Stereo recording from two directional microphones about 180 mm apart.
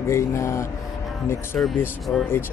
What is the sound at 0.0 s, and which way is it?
Speech, 15° left (ahead or behind).